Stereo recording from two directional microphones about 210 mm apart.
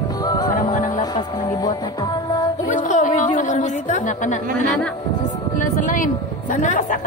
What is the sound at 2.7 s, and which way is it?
Music, 35° left (ahead or behind).